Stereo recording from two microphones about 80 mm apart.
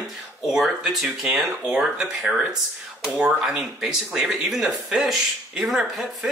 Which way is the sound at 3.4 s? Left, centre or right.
Centre.